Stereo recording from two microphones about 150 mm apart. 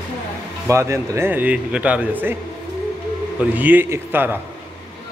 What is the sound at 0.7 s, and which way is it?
Speech, 20° right (ahead or behind).